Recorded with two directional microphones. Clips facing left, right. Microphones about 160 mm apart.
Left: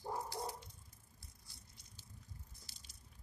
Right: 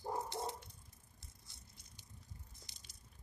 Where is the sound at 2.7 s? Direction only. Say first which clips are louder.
Left 1 dB; 20° right (ahead or behind).